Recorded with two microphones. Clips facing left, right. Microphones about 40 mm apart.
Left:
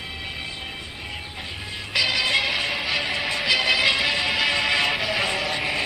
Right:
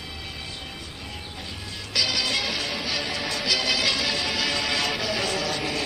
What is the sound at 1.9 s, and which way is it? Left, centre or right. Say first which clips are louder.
Music: left 4 dB; left.